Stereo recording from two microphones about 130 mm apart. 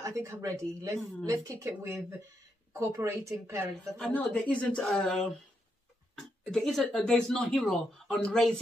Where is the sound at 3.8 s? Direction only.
5° left (ahead or behind).